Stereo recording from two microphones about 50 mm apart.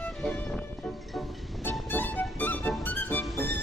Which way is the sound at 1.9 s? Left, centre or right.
Left.